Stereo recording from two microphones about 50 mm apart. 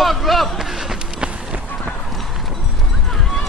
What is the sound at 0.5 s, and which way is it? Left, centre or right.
Run, centre.